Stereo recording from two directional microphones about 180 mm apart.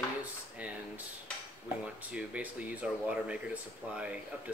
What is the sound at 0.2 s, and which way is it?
Drawer open or close, 10° right (ahead or behind).